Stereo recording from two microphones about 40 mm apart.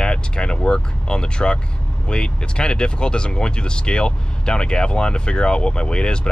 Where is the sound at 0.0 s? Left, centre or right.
Left.